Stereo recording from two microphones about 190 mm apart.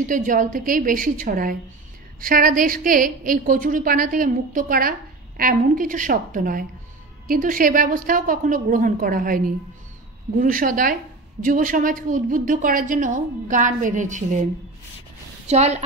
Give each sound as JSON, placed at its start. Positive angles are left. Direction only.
{"t": 0.1, "sound": "a woman's voice", "side_deg": -45}
{"t": 15.4, "sound": "a woman's voice", "side_deg": -35}